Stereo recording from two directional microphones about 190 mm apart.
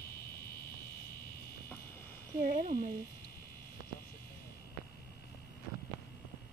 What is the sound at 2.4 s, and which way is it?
Speech, 45° right (ahead or behind).